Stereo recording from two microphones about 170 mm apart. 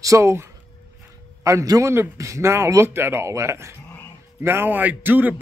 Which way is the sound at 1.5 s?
20° right (ahead or behind).